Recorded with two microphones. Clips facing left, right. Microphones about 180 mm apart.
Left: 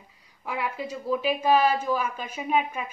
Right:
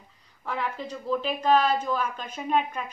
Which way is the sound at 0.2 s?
10° left (ahead or behind).